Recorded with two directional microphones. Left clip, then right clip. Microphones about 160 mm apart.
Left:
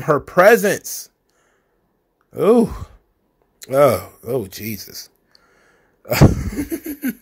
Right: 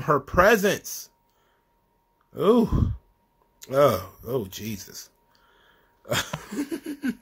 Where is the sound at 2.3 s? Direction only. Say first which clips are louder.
Left 6 dB; 25° left (ahead or behind).